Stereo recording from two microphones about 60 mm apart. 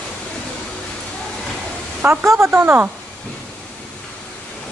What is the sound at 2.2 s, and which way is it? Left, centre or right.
Speech, right.